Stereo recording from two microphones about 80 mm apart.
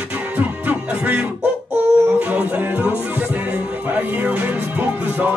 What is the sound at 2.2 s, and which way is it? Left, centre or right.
Music, centre.